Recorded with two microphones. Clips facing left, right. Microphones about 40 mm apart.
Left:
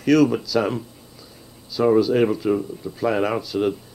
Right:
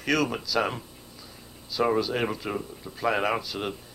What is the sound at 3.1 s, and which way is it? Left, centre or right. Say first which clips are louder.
Speech: left 5 dB; centre.